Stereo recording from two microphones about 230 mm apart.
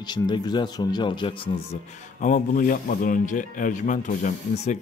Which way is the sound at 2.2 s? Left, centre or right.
Left.